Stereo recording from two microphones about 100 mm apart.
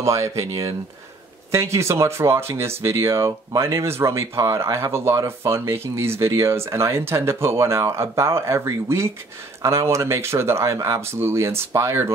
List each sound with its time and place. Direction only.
0.0 s speech: 30° right (ahead or behind)